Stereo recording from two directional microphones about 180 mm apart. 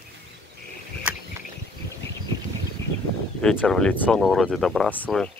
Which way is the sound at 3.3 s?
5° left (ahead or behind).